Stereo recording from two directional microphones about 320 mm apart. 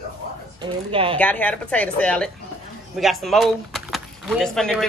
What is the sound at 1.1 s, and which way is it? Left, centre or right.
A woman's voice, centre.